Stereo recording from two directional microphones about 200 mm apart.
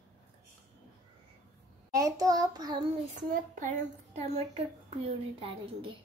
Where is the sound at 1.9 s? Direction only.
15° right (ahead or behind).